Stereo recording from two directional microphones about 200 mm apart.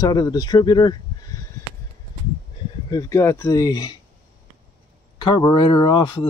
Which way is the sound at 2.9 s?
15° left (ahead or behind).